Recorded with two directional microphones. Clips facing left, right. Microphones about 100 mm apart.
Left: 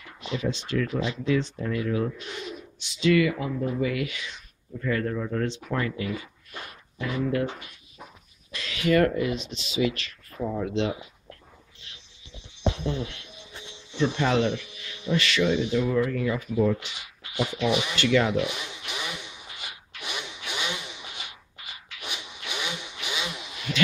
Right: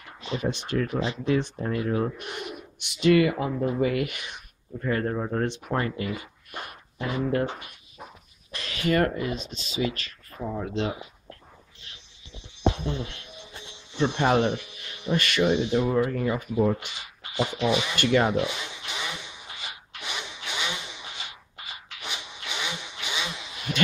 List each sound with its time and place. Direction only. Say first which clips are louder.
0.4 s speech: right 1 dB; 50° right (ahead or behind)
1.6 s speech: right 1 dB; 35° right (ahead or behind)
2.1 s speech: right 1 dB; 55° right (ahead or behind)
3.5 s speech: right 2 dB; 25° right (ahead or behind)
3.8 s speech: right 2 dB; 45° right (ahead or behind)
4.7 s speech: right 1 dB; 35° right (ahead or behind)
5.4 s speech: right 1 dB; 50° right (ahead or behind)
5.7 s speech: right 1 dB; 35° right (ahead or behind)
8.5 s speech: left 2 dB; 40° right (ahead or behind)
12.7 s speech: left 1 dB; 35° right (ahead or behind)
15.4 s speech: right 2 dB; 35° right (ahead or behind)
16.5 s speech: left 1 dB; 25° right (ahead or behind)
18.0 s a sound: even; 30° right (ahead or behind)
22.0 s vehicle: even; 25° right (ahead or behind)